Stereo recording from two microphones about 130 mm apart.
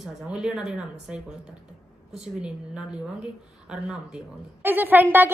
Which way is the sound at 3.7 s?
5° right (ahead or behind).